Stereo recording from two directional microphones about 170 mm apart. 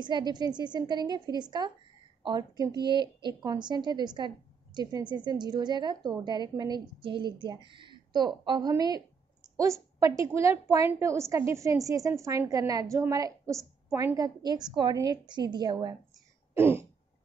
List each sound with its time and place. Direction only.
0.0 s a woman's voice: 25° right (ahead or behind)
16.5 s throat clearing: 15° right (ahead or behind)